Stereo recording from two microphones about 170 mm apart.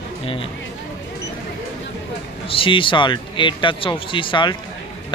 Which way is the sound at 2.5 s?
30° left (ahead or behind).